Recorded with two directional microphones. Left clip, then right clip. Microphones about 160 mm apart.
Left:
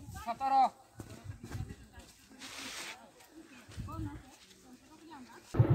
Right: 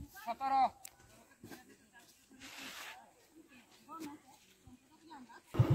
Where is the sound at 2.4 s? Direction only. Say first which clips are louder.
Left 4 dB; 15° left (ahead or behind).